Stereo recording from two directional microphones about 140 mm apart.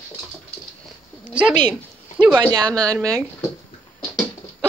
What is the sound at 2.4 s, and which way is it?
Speech, 25° right (ahead or behind).